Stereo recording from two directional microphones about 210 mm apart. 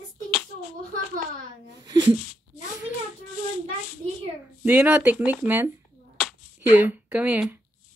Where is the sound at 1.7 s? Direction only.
20° right (ahead or behind).